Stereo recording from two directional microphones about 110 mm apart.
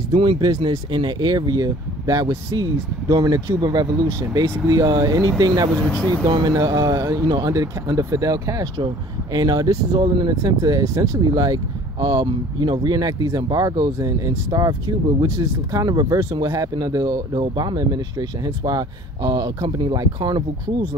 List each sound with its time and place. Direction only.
0.1 s speech: 50° right (ahead or behind)
5.9 s speech: 10° left (ahead or behind)
6.2 s speech: 40° right (ahead or behind)
10.4 s speech: 30° right (ahead or behind)
12.3 s speech: 50° right (ahead or behind)